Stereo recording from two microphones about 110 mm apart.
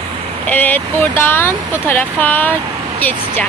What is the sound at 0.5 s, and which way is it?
Speech, 15° left (ahead or behind).